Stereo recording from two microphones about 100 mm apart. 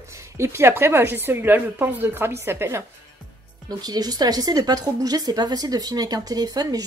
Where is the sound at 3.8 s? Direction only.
40° right (ahead or behind).